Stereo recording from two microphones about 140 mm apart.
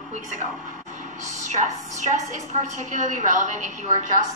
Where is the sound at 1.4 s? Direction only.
60° right (ahead or behind).